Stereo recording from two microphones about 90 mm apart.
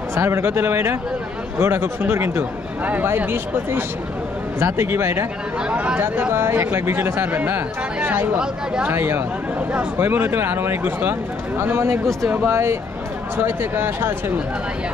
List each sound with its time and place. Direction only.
0.1 s speech: 25° right (ahead or behind)
5.7 s speech: 15° right (ahead or behind)